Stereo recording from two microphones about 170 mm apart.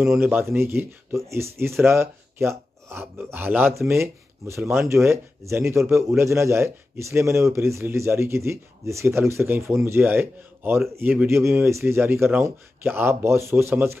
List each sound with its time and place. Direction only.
0.2 s a man's voice: 15° right (ahead or behind)